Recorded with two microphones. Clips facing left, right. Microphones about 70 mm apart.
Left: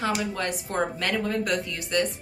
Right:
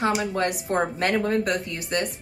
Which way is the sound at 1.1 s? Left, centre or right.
Right.